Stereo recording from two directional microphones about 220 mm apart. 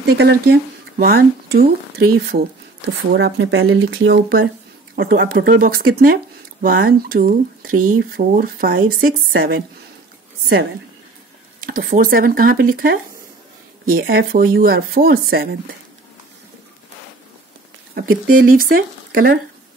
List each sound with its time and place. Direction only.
0.0 s speech: 50° right (ahead or behind)
3.3 s speech: 65° right (ahead or behind)
4.9 s speech: 50° right (ahead or behind)
11.6 s speech: 40° right (ahead or behind)
17.9 s speech: 45° right (ahead or behind)